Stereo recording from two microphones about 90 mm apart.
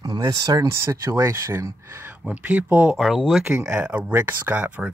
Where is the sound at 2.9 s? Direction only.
Centre (ahead or behind).